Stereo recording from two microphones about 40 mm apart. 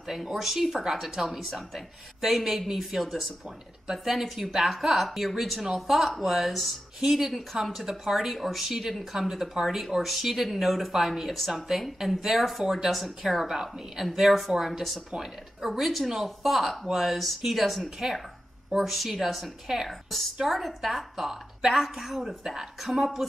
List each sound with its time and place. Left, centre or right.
0.1 s a woman's voice: centre